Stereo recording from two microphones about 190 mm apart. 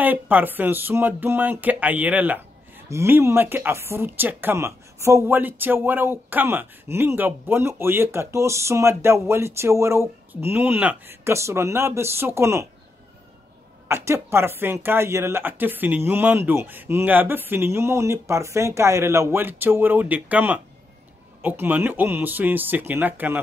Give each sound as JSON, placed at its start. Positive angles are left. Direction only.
{"t": 0.0, "sound": "speech", "side_deg": -10}
{"t": 13.8, "sound": "speech", "side_deg": -15}